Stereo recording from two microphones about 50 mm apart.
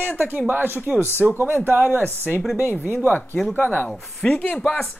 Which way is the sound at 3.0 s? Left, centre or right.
Left.